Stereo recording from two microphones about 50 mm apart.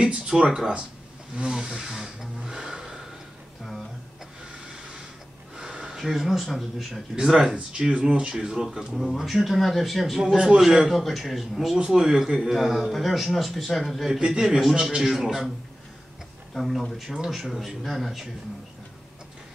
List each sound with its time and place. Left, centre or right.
0.0 s speech: centre
5.6 s speech: centre
8.9 s speech: centre
10.3 s speech: centre
11.7 s speech: centre
15.0 s speech: centre
16.5 s speech: centre